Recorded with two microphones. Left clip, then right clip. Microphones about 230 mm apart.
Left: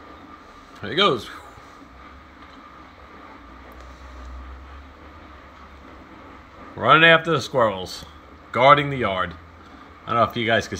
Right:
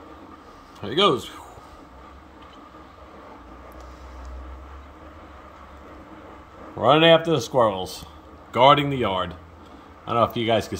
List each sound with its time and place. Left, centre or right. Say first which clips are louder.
0.7 s speech: even; centre
6.8 s speech: left 2 dB; centre
7.5 s speech: right 1 dB; left
8.5 s a man's voice: left 1 dB; centre
8.9 s speech: even; left
10.2 s speech: left 1 dB; centre